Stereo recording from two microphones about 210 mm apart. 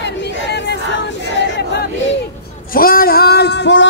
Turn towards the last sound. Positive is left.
turn(degrees=55)  # may be behind; listen again after turning